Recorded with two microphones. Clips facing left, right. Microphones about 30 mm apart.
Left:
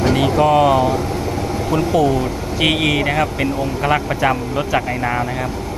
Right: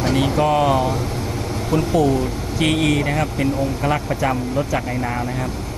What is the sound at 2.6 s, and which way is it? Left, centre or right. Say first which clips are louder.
Speech: left 2 dB; left.